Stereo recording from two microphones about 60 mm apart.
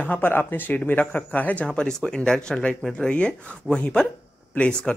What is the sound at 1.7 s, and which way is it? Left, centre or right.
Speech, centre.